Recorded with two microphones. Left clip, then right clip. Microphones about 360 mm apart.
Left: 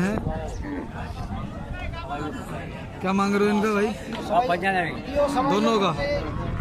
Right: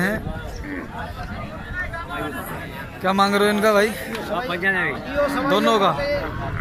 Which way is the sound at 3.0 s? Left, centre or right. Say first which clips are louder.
Right 5 dB; centre.